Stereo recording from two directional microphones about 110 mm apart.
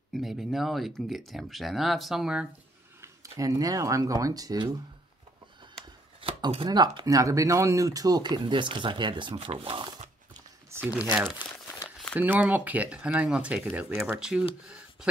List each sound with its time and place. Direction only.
0.1 s speech: centre (ahead or behind)
3.0 s speech: 30° right (ahead or behind)
6.2 s chopping: 55° right (ahead or behind)
6.7 s speech: 40° right (ahead or behind)
9.4 s speech: 60° right (ahead or behind)
10.9 s speech: 10° right (ahead or behind)